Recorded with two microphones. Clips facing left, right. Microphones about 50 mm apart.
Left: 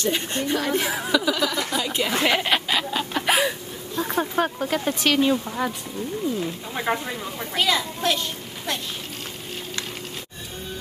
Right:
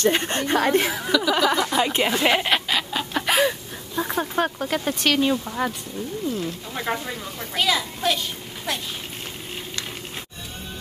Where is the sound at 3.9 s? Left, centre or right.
Centre.